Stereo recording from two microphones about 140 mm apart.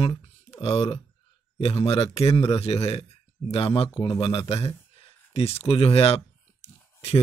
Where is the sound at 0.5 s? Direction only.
40° left (ahead or behind).